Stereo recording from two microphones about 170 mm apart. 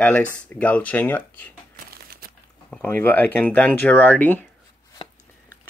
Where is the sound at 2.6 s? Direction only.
5° left (ahead or behind).